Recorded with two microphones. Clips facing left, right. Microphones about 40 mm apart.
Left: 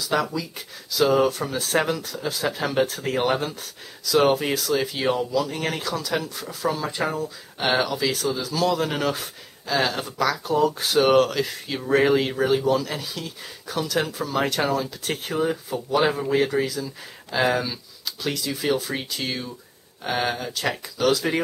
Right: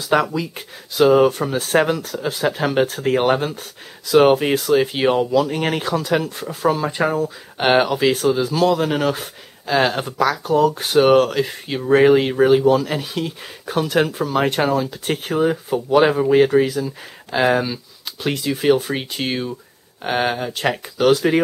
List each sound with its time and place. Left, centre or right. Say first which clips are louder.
0.0 s speech: right 6 dB; right
18.0 s speech: right 5 dB; right